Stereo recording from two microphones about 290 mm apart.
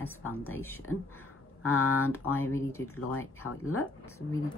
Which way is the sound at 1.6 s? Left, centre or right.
Left.